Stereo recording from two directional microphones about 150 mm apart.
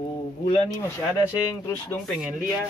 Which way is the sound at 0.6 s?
15° left (ahead or behind).